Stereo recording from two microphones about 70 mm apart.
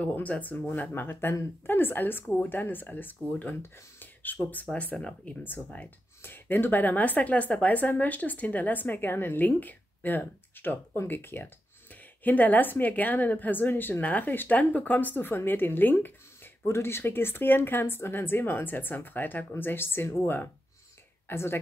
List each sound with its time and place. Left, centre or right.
0.0 s speech: left
4.0 s a sound: left
4.9 s a woman's voice: centre; by 21.5 s left